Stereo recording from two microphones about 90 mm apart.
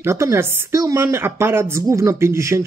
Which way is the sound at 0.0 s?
30° right (ahead or behind).